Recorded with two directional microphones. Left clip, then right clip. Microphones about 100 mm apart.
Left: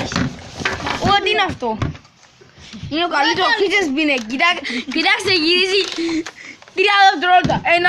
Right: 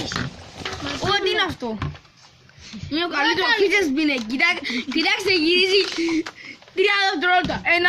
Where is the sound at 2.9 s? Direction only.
15° right (ahead or behind); by 5.9 s 5° left (ahead or behind).